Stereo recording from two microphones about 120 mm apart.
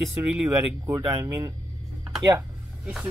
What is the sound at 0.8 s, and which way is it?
Speech, 25° right (ahead or behind).